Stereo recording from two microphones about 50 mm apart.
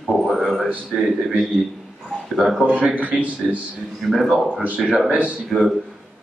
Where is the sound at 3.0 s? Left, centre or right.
Right.